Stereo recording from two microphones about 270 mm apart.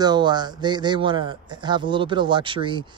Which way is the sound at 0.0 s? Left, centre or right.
Centre.